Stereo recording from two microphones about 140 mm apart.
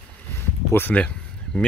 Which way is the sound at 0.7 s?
10° left (ahead or behind).